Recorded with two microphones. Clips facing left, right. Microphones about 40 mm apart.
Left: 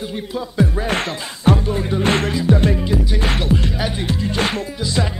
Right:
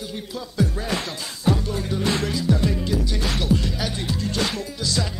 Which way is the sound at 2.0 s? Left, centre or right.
Left.